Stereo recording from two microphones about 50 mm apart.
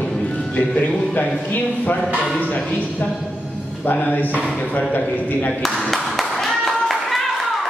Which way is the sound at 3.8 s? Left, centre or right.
Left.